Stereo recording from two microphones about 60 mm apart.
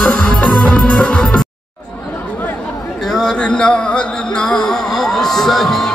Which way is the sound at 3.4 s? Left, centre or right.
Centre.